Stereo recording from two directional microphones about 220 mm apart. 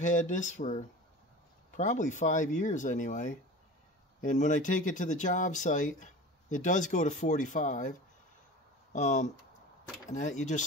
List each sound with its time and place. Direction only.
0.0 s speech: 35° left (ahead or behind)
8.9 s speech: 30° left (ahead or behind)